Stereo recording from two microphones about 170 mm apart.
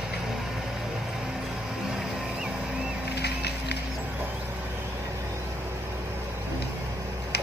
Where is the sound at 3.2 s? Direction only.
75° left (ahead or behind).